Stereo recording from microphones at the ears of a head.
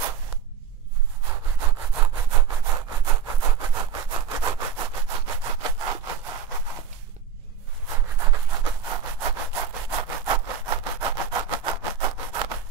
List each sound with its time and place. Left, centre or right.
1.2 s sawing: right
7.8 s rub: right